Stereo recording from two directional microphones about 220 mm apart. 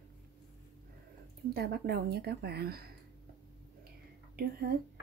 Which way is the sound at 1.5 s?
45° right (ahead or behind).